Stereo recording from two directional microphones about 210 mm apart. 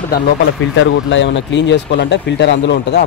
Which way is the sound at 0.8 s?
60° left (ahead or behind).